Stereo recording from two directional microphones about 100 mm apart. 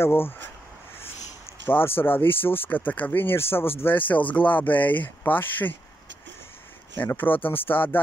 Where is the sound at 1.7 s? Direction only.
20° left (ahead or behind).